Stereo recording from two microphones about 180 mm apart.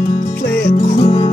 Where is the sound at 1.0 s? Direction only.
30° left (ahead or behind).